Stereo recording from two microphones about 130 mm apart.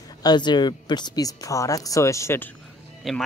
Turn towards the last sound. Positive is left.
turn(degrees=0)  # may be behind; listen again after turning